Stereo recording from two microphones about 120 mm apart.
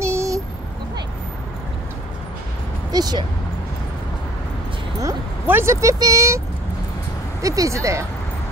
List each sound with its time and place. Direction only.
0.0 s a sound: 25° right (ahead or behind)
2.9 s speech: 35° right (ahead or behind)
5.0 s speech: 20° right (ahead or behind)
7.4 s speech: 25° right (ahead or behind)